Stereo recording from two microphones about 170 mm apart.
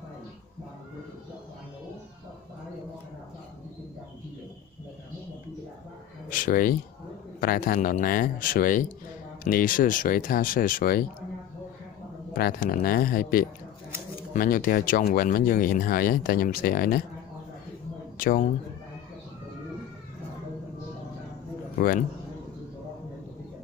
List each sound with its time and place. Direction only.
6.3 s speech: 55° left (ahead or behind)
12.4 s speech: 60° left (ahead or behind)
18.1 s a sound: 55° left (ahead or behind)
21.7 s a man's voice: 60° left (ahead or behind)